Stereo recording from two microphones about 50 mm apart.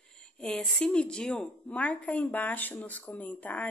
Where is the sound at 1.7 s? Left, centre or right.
Left.